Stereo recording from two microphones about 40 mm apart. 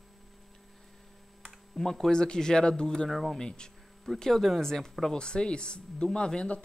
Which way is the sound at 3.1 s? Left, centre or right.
Centre.